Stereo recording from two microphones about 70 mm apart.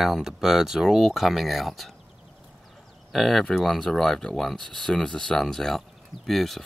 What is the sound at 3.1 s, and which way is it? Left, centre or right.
Speech, centre.